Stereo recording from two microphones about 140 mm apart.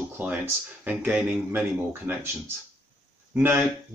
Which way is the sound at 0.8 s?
10° right (ahead or behind).